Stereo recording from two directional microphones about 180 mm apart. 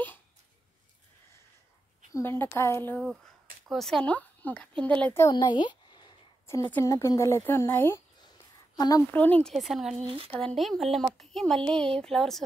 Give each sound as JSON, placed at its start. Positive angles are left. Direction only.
{"t": 2.1, "sound": "speech", "side_deg": 10}
{"t": 3.6, "sound": "speech", "side_deg": 0}
{"t": 5.3, "sound": "a sound", "side_deg": 25}
{"t": 6.4, "sound": "speech", "side_deg": 10}
{"t": 9.1, "sound": "speech", "side_deg": 10}
{"t": 10.0, "sound": "speech", "side_deg": -30}
{"t": 10.3, "sound": "speech", "side_deg": 5}